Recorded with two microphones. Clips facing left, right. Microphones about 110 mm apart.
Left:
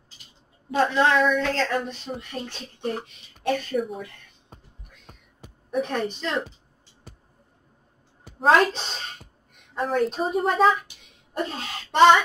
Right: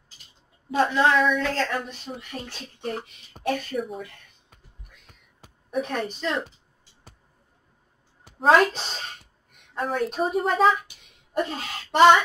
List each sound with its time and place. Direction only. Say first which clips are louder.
0.7 s a woman's voice: even; 5° right (ahead or behind)
4.5 s music: left 10 dB; 30° left (ahead or behind)
5.1 s whispering: left 7 dB; 30° left (ahead or behind)
5.8 s a woman's voice: left 1 dB; centre (ahead or behind)
8.4 s a woman's voice: even; centre (ahead or behind)